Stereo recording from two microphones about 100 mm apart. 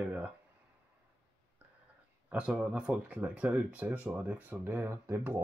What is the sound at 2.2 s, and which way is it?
Speech, 15° right (ahead or behind).